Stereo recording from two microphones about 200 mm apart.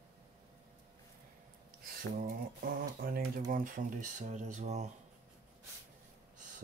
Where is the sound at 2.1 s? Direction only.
45° right (ahead or behind).